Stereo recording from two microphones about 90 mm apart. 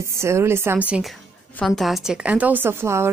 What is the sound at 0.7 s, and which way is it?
Speech, 15° right (ahead or behind).